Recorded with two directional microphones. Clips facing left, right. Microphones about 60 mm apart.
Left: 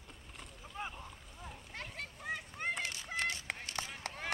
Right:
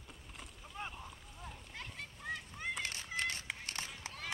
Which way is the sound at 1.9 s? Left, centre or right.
Left.